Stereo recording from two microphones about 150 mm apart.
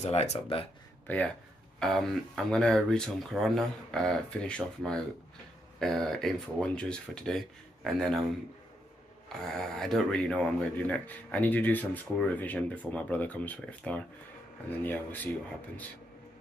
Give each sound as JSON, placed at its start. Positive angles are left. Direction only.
{"t": 0.0, "sound": "speech", "side_deg": 45}
{"t": 1.0, "sound": "speech", "side_deg": 10}
{"t": 9.4, "sound": "speech", "side_deg": 5}